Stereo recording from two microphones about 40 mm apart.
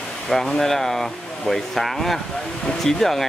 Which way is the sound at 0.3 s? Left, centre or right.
Centre.